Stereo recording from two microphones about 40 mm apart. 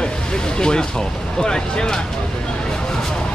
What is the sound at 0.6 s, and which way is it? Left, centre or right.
Speech, left.